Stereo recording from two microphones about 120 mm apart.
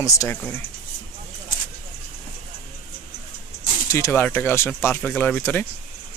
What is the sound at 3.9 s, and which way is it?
Speech, 20° left (ahead or behind).